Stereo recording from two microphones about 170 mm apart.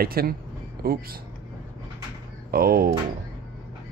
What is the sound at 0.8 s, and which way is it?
Speech, 60° right (ahead or behind).